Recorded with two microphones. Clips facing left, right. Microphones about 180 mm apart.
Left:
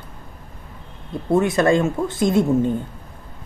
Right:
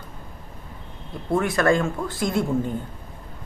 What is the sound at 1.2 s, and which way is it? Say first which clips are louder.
Speech: left 3 dB; 20° left (ahead or behind).